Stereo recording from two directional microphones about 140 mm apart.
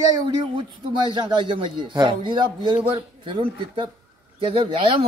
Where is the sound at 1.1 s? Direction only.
35° right (ahead or behind).